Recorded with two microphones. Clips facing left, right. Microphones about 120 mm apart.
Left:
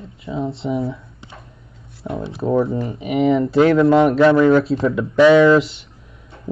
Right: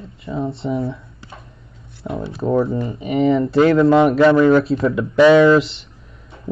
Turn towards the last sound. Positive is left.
turn(degrees=0)  # may be behind; listen again after turning